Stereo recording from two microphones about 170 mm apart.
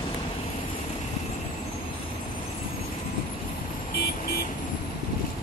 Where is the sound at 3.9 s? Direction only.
70° left (ahead or behind).